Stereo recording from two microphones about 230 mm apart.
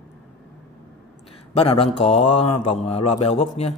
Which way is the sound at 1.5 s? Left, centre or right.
Left.